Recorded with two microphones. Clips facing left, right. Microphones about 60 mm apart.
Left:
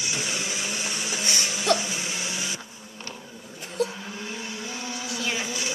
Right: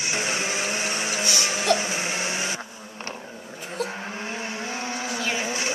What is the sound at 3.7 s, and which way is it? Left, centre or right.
Vehicle, right.